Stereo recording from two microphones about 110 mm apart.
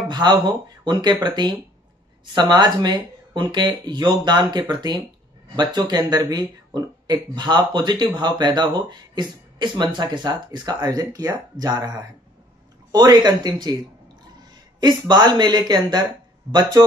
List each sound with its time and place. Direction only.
0.1 s speech: 40° right (ahead or behind)
14.8 s speech: 40° right (ahead or behind)